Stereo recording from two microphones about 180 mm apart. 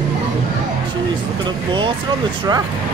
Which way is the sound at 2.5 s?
20° right (ahead or behind).